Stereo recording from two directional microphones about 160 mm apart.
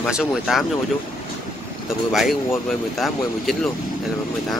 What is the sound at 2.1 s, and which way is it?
Speech, centre (ahead or behind).